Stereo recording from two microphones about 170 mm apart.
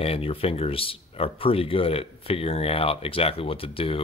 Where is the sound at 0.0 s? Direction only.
35° left (ahead or behind).